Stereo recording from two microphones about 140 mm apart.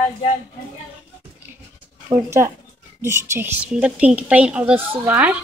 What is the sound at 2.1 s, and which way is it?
A woman's voice, 20° right (ahead or behind).